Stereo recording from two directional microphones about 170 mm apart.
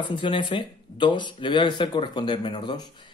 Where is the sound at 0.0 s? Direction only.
30° left (ahead or behind).